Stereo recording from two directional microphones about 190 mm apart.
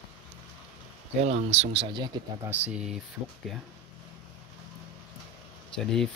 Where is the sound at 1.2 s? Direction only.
35° right (ahead or behind).